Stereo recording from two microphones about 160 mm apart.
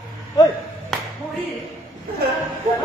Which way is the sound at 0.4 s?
25° left (ahead or behind).